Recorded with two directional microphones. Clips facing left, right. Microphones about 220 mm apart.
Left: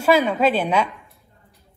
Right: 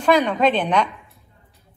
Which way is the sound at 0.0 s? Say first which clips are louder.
Even; 5° left (ahead or behind).